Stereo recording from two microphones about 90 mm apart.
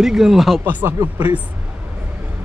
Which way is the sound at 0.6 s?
25° right (ahead or behind).